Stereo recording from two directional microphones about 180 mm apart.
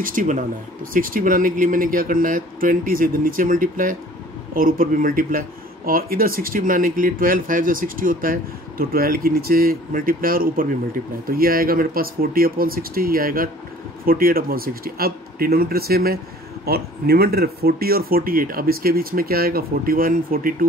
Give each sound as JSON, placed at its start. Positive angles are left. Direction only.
{"t": 0.0, "sound": "speech", "side_deg": -45}